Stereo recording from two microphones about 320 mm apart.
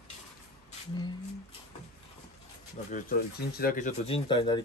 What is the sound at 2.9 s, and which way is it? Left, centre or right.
Speech, left.